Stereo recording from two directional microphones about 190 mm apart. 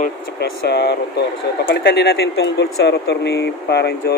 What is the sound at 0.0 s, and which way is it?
Speech, 60° left (ahead or behind).